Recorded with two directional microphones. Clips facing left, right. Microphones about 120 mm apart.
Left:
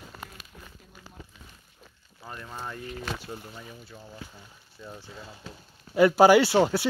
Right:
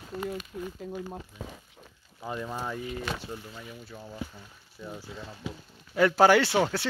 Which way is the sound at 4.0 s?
15° right (ahead or behind).